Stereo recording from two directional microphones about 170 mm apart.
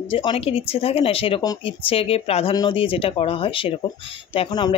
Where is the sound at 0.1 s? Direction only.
30° left (ahead or behind).